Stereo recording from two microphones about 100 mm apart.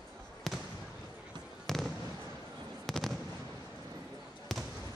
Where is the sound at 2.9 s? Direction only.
5° left (ahead or behind).